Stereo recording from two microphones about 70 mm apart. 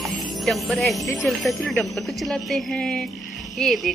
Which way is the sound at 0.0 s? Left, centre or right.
Centre.